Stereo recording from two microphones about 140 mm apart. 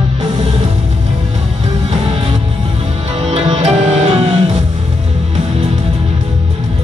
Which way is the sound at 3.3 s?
50° right (ahead or behind).